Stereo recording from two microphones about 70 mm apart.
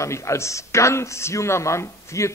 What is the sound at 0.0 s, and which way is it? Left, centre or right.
Speech, left.